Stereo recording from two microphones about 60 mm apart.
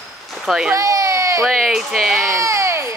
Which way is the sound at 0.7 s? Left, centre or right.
Right.